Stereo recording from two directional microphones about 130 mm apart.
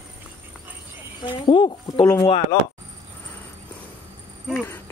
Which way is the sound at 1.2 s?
35° left (ahead or behind).